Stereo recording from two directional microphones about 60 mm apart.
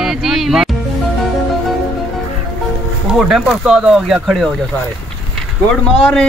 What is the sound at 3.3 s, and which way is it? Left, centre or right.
Speech, centre.